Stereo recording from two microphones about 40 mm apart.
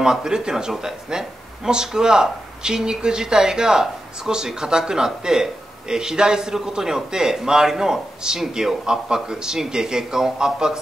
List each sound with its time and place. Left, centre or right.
0.0 s speech: centre